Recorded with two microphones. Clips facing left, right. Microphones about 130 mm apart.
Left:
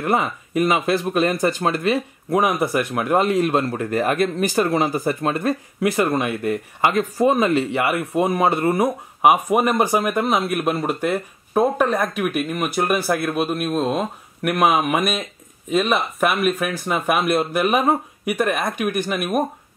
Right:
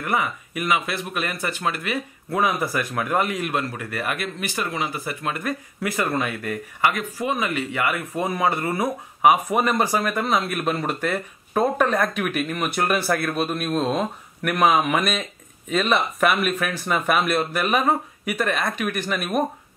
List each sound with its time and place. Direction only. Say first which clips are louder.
0.0 s speech: left 4 dB; 30° left (ahead or behind)
2.2 s speech: left 3 dB; 15° left (ahead or behind)
3.0 s speech: left 6 dB; 25° left (ahead or behind)
8.8 s speech: right 2 dB; 10° left (ahead or behind)